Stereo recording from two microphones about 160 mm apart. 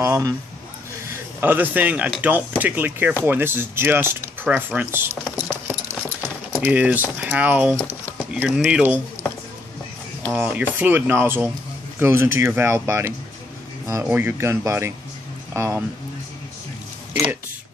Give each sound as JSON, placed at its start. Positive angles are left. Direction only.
{"t": 0.0, "sound": "speech", "side_deg": -20}
{"t": 10.3, "sound": "speech", "side_deg": -10}
{"t": 17.1, "sound": "speech", "side_deg": -15}